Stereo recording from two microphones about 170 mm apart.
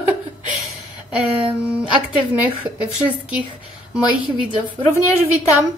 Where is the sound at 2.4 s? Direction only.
10° right (ahead or behind).